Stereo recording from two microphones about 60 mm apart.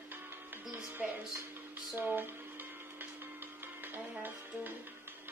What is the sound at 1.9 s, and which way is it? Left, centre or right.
Music, right.